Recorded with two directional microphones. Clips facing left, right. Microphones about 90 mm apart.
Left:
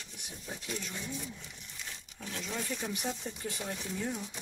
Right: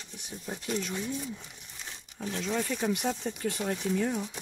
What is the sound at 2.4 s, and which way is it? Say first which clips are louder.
Speech: right 8 dB; 80° right.